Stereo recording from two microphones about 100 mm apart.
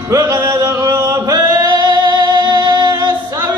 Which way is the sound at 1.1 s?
40° right (ahead or behind).